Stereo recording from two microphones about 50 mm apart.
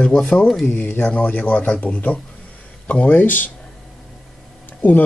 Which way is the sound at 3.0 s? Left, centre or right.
Left.